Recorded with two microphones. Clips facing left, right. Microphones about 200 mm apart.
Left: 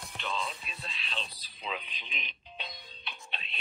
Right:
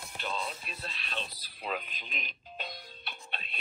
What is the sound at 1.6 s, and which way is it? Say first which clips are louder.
Speech: right 2 dB; 50° right (ahead or behind).